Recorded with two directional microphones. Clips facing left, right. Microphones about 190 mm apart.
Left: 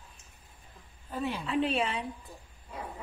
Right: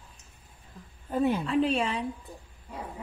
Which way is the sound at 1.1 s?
50° right (ahead or behind).